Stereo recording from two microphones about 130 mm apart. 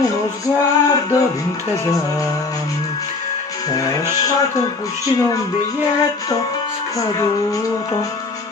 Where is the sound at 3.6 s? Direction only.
25° left (ahead or behind).